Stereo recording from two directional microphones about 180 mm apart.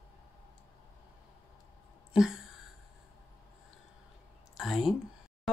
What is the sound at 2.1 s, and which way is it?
Speech, centre (ahead or behind).